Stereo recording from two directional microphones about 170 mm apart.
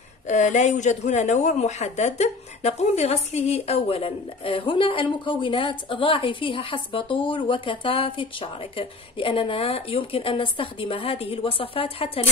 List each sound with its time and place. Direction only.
0.3 s speech: 45° left (ahead or behind)